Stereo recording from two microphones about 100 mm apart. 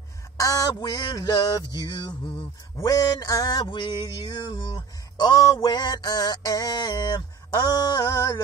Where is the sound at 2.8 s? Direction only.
35° left (ahead or behind).